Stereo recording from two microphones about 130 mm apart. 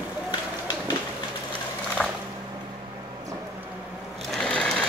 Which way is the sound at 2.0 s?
Centre (ahead or behind).